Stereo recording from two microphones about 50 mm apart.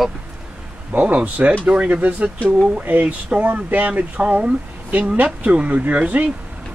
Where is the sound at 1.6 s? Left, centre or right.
Right.